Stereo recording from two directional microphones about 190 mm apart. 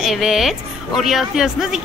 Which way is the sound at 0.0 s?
Centre (ahead or behind).